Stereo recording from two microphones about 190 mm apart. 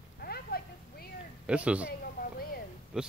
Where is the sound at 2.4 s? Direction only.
50° left (ahead or behind).